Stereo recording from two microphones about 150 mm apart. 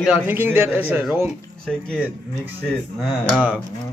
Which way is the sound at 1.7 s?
5° left (ahead or behind).